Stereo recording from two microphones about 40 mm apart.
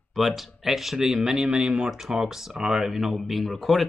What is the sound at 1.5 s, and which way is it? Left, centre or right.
Speech, right.